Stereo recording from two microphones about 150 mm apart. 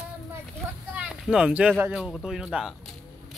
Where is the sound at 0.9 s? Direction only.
5° right (ahead or behind).